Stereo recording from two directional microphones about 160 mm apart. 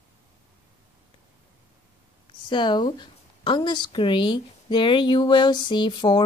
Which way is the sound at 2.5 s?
30° left (ahead or behind).